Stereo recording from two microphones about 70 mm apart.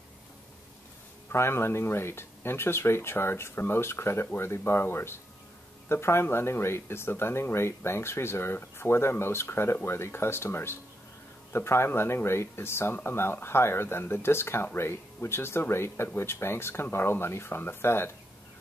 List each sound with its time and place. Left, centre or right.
1.3 s speech: left